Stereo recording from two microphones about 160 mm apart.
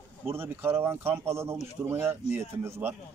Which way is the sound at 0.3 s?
15° right (ahead or behind).